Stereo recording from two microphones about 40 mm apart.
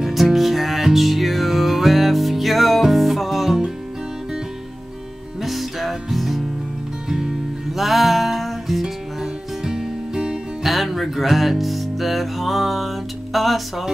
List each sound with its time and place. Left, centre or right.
0.0 s music: centre
5.4 s music: centre
7.1 s music: centre
7.7 s music: centre
10.6 s music: centre